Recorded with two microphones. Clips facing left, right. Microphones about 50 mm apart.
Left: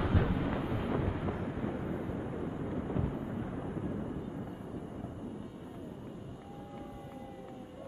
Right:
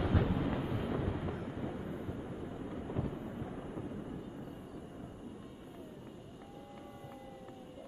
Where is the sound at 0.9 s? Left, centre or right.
Left.